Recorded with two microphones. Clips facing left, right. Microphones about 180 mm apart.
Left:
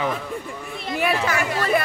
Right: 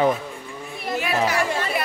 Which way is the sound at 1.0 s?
55° left (ahead or behind).